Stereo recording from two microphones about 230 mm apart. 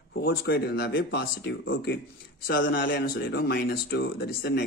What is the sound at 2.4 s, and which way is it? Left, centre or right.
A man's voice, left.